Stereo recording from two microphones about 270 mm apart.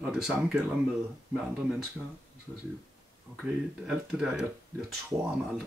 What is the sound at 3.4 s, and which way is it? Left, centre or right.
Speech, centre.